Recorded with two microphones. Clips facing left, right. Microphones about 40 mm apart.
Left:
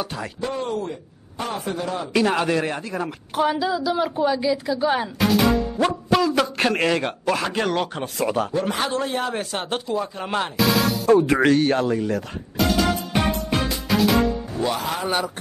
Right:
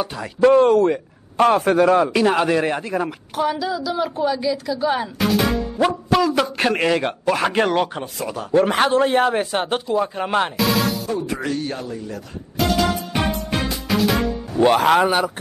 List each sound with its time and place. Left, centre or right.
0.0 s speech: centre
0.4 s a man's voice: right
2.1 s a man's voice: centre
3.3 s a woman's voice: centre
7.4 s speech: right
7.7 s a man's voice: centre
8.5 s speech: right
9.3 s a man's voice: right
10.6 s music: centre
11.1 s speech: left
11.4 s a man's voice: left
13.1 s music: centre
14.6 s speech: right
15.0 s a man's voice: centre